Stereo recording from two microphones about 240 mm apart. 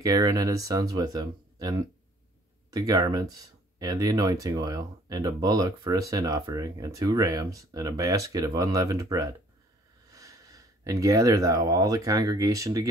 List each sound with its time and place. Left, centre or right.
0.0 s speech: centre